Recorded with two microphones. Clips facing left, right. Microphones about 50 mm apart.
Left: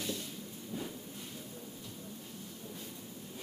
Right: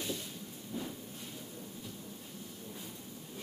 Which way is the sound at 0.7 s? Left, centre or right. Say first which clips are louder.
Even; left.